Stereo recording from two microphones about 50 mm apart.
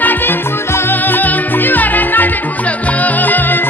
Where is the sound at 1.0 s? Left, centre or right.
Left.